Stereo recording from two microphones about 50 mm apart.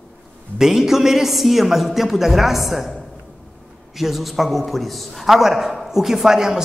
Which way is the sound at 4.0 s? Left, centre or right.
Centre.